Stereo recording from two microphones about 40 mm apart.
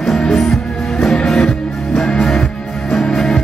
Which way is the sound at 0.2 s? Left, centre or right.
Centre.